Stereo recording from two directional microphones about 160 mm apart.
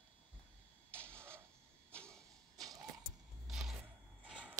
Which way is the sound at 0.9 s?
15° right (ahead or behind).